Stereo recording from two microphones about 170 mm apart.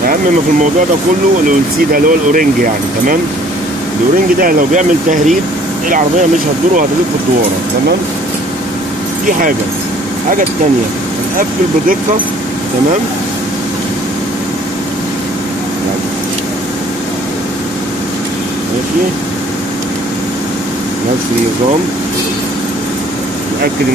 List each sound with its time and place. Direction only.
1.9 s speech: 55° right (ahead or behind)
4.4 s speech: 55° right (ahead or behind)